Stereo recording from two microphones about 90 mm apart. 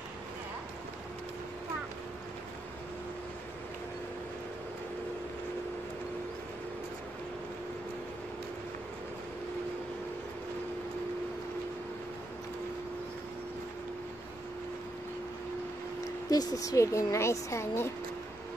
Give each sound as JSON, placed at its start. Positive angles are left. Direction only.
{"t": 16.3, "sound": "speech", "side_deg": 45}